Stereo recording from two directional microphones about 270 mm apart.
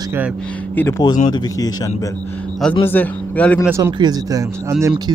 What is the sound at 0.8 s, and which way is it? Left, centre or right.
Speech, centre.